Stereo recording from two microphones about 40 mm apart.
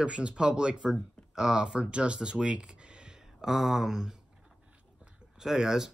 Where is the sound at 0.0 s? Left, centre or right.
Right.